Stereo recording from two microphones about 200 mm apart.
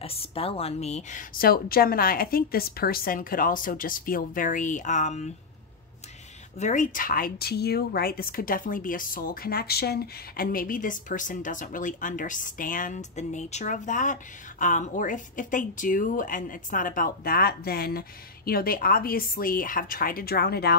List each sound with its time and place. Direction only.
0.0 s a woman's voice: 30° left (ahead or behind)
1.4 s speech: 50° left (ahead or behind)
6.6 s speech: 40° left (ahead or behind)